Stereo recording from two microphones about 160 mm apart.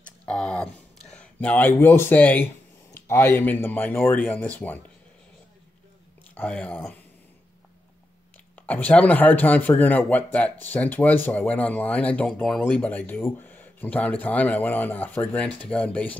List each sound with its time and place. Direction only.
0.0 s a sound: 5° left (ahead or behind)
1.1 s speech: 5° left (ahead or behind)
6.3 s speech: 10° left (ahead or behind)
8.5 s speech: 10° left (ahead or behind)